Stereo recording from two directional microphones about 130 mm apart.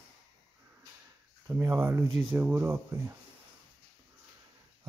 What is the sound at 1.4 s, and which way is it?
Speech, 20° right (ahead or behind).